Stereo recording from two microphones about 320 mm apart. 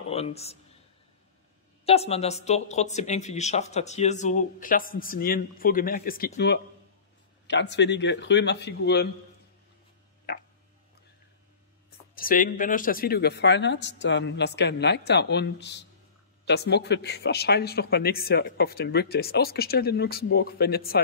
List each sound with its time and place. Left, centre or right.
0.1 s speech: centre
1.9 s speech: centre
12.2 s speech: left